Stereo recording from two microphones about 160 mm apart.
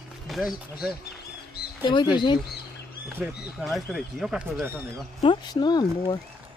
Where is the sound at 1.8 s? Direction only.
30° left (ahead or behind).